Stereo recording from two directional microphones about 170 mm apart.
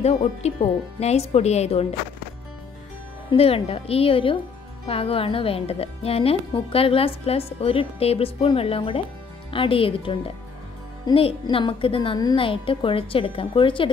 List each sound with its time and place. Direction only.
0.0 s a woman's voice: 40° left (ahead or behind)
3.3 s a woman's voice: 35° left (ahead or behind)